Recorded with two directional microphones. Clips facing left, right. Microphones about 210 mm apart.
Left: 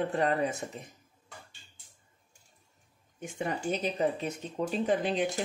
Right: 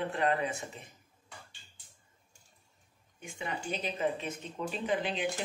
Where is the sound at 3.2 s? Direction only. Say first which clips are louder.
Left 6 dB; 45° left (ahead or behind).